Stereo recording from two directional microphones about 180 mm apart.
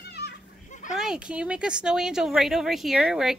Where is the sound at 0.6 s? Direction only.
45° left (ahead or behind).